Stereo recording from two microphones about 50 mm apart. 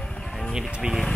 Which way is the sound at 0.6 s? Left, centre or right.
Centre.